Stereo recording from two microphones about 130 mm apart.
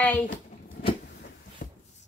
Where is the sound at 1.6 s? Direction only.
90° left.